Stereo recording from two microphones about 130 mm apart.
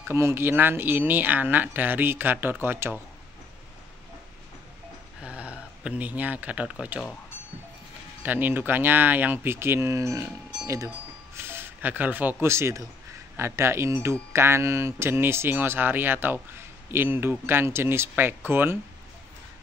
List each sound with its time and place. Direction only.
0.1 s speech: 20° right (ahead or behind)
5.2 s speech: 10° right (ahead or behind)
8.2 s speech: 15° right (ahead or behind)
11.3 s speech: 20° right (ahead or behind)